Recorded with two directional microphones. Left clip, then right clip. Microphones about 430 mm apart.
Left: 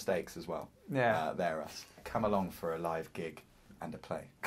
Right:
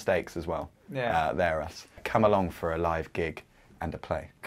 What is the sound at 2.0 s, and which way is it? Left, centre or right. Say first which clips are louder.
Speech: right 9 dB; right.